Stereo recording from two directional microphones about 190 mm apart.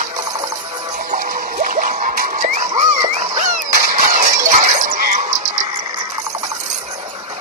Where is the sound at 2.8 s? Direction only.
40° right (ahead or behind).